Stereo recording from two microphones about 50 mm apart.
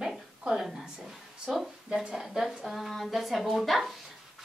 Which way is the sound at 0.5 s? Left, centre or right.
Centre.